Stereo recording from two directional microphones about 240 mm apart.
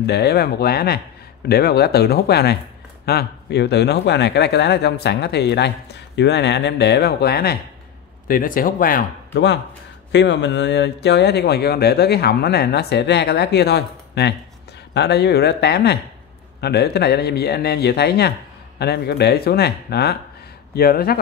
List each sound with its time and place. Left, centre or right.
0.0 s speech: left